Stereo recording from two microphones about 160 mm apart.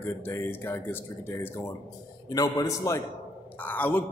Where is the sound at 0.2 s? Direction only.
15° left (ahead or behind).